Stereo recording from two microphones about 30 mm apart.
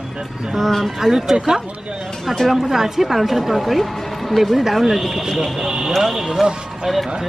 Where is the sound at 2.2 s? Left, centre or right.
Centre.